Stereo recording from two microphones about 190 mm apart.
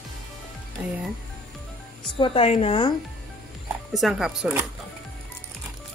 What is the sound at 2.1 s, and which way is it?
Speech, 30° left (ahead or behind).